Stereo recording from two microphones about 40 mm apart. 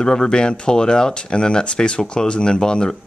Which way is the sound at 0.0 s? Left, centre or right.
Centre.